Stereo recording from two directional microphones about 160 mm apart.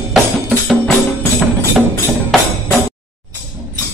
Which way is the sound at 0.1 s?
Centre (ahead or behind).